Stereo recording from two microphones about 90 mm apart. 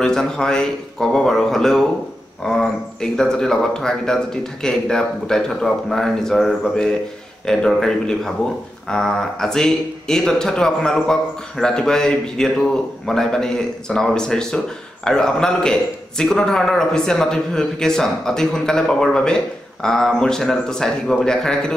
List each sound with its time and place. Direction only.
0.0 s a man's voice: 5° left (ahead or behind)